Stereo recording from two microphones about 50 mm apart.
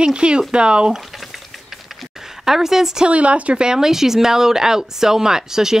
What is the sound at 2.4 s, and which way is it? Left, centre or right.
Speech, centre.